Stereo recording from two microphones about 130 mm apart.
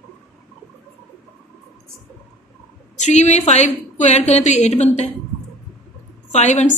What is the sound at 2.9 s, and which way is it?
A woman's voice, 60° left (ahead or behind).